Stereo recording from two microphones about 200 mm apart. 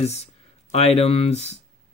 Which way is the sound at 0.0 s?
30° left (ahead or behind).